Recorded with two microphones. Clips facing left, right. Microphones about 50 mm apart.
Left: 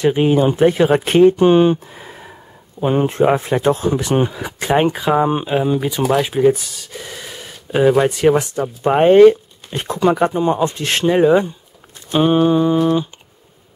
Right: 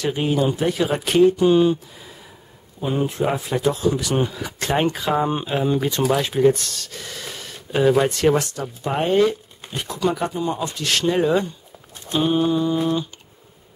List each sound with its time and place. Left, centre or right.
0.0 s speech: left
8.8 s speech: left
12.1 s speech: left